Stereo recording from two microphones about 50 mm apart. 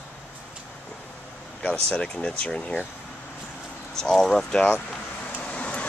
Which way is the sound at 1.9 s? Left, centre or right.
Left.